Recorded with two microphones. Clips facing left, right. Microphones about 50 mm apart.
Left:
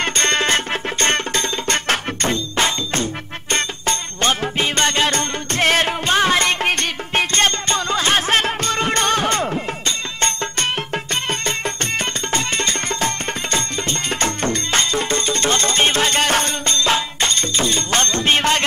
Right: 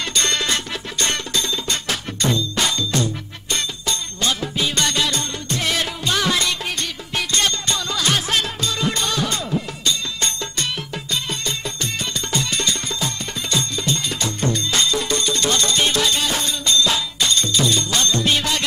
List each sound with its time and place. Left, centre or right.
0.0 s music: left